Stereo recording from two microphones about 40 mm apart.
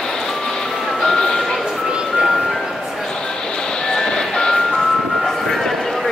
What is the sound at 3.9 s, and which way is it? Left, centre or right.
Vehicle, centre.